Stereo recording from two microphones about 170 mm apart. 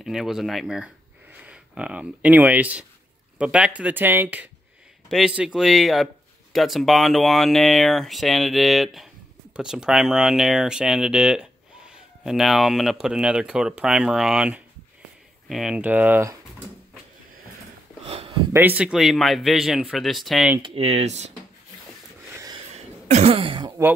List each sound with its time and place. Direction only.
0.0 s speech: centre (ahead or behind)
18.0 s a sound: 35° right (ahead or behind)
18.5 s speech: 10° right (ahead or behind)
20.6 s speech: 35° right (ahead or behind)
22.3 s a sound: 20° right (ahead or behind)
22.8 s cough: 40° right (ahead or behind)